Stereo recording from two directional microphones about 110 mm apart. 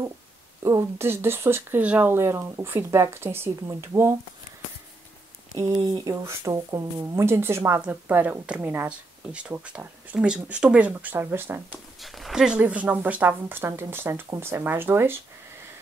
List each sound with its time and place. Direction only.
0.6 s speech: 30° right (ahead or behind)
5.9 s speech: 40° right (ahead or behind)
7.2 s speech: 25° right (ahead or behind)
12.0 s speech: centre (ahead or behind); by 15.1 s 20° right (ahead or behind)